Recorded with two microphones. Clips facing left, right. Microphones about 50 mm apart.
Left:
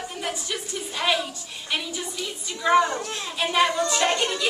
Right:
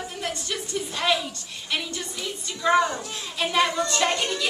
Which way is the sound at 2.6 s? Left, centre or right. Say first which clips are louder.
Left 1 dB; centre.